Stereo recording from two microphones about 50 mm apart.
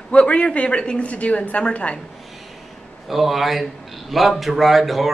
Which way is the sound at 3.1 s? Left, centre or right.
Centre.